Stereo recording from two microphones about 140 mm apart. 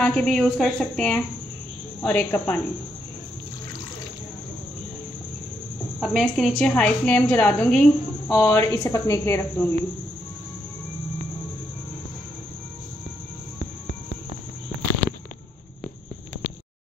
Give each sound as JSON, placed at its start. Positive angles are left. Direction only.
{"t": 0.0, "sound": "a woman's voice", "side_deg": 10}
{"t": 5.9, "sound": "a woman's voice", "side_deg": -5}
{"t": 6.7, "sound": "a woman's voice", "side_deg": 10}